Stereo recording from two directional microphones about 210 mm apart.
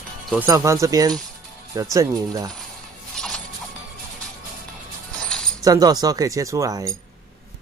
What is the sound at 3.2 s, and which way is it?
Music, 5° left (ahead or behind).